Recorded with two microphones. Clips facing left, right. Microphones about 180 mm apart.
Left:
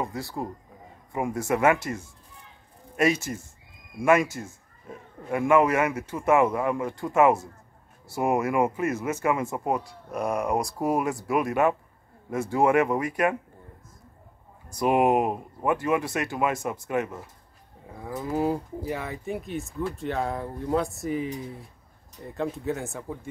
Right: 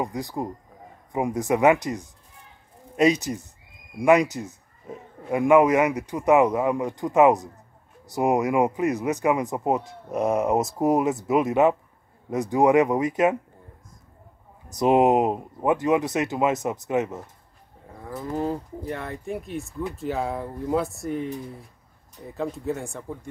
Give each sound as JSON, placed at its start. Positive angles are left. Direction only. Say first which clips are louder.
{"t": 0.0, "sound": "a man's voice", "louder": "right 3 dB", "side_deg": -15}
{"t": 14.7, "sound": "speech", "louder": "right 3 dB", "side_deg": -20}
{"t": 17.9, "sound": "livestock", "louder": "left 1 dB", "side_deg": 5}